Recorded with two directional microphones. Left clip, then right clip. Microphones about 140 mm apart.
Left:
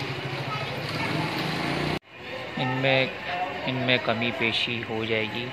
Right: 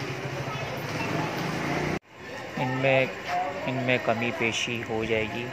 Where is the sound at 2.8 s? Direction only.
5° right (ahead or behind).